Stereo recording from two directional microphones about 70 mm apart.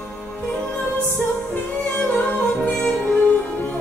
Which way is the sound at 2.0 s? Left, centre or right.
Centre.